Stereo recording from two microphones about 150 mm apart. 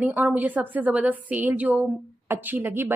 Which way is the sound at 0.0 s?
10° right (ahead or behind).